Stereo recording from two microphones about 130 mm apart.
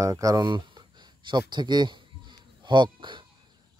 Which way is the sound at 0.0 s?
25° right (ahead or behind).